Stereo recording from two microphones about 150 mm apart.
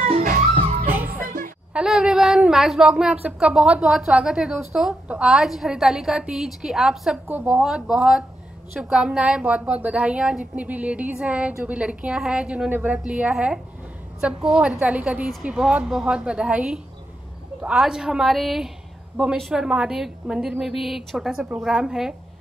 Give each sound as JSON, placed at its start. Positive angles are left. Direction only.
{"t": 0.0, "sound": "music", "side_deg": -45}
{"t": 0.7, "sound": "music", "side_deg": -70}
{"t": 1.7, "sound": "a woman's voice", "side_deg": -5}